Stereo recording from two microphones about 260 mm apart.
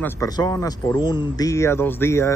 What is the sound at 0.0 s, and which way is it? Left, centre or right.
Speech, centre.